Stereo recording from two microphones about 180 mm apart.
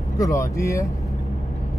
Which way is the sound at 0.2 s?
20° left (ahead or behind).